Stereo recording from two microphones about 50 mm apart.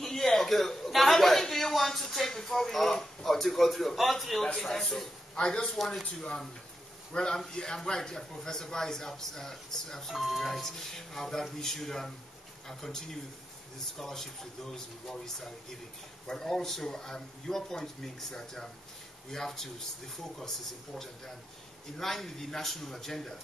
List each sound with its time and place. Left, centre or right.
0.0 s a man's voice: centre
5.8 s speech: centre
7.1 s a man's voice: centre
10.1 s a man's voice: centre
21.9 s a man's voice: centre